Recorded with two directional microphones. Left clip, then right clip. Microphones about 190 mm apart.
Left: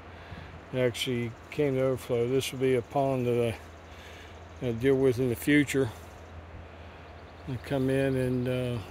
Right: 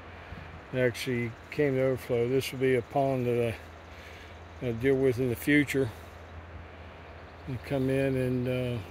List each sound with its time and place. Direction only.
0.7 s speech: 5° left (ahead or behind)
2.3 s speech: 55° left (ahead or behind)
3.0 s speech: 10° left (ahead or behind)
4.6 s speech: 20° left (ahead or behind)
7.6 s speech: 10° left (ahead or behind)